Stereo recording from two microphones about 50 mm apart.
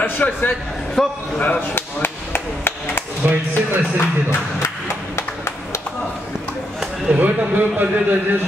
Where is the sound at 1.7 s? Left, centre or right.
Left.